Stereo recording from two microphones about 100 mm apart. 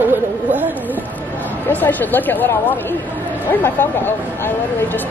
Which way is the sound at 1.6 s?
20° left (ahead or behind).